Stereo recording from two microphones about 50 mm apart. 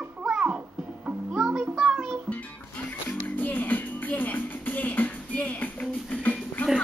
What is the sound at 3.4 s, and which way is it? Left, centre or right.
Music, left.